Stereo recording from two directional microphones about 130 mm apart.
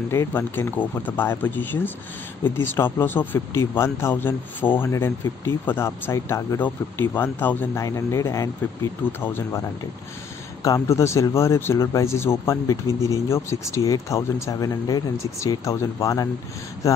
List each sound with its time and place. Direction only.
0.1 s speech: 20° left (ahead or behind)
10.6 s speech: 25° left (ahead or behind)